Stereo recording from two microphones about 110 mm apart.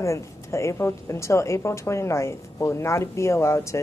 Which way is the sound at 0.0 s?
25° left (ahead or behind).